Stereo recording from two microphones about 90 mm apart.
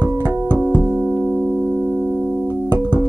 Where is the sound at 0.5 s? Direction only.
25° right (ahead or behind).